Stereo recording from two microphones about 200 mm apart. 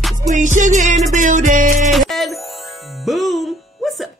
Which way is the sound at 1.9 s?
Centre (ahead or behind).